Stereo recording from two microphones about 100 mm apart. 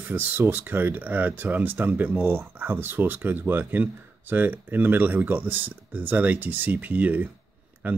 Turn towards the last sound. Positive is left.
turn(degrees=-15)  # may be behind; listen again after turning